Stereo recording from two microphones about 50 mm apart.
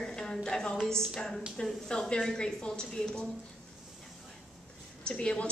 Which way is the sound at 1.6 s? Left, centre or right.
Centre.